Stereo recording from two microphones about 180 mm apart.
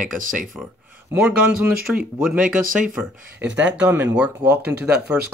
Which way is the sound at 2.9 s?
10° right (ahead or behind).